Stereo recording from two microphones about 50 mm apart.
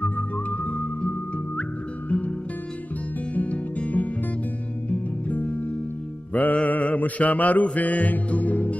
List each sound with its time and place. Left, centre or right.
0.0 s music: left
3.3 s music: left
6.3 s mantra: left